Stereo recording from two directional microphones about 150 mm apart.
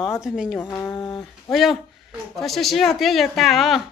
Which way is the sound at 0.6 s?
15° left (ahead or behind).